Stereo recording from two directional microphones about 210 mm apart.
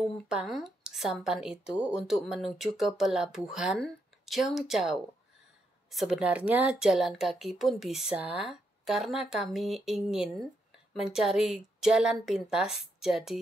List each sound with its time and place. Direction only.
0.0 s a woman's voice: centre (ahead or behind)